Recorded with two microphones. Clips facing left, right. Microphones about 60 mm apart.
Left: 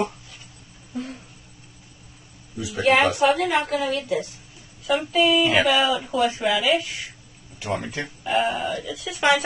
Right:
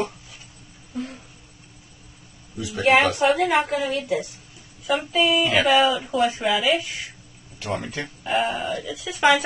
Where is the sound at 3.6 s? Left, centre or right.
Centre.